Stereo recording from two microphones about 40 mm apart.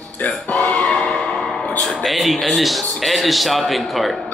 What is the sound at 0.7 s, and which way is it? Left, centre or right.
Music, centre.